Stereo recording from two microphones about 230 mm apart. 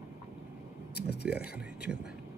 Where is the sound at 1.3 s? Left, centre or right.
Centre.